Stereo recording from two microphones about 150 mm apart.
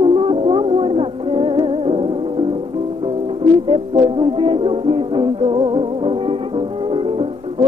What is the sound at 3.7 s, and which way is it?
Music, 35° right (ahead or behind).